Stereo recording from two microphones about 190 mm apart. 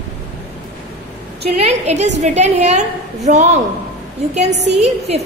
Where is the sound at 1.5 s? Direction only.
35° right (ahead or behind).